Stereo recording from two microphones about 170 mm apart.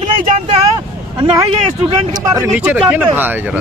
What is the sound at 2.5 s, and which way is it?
Speech, 5° right (ahead or behind).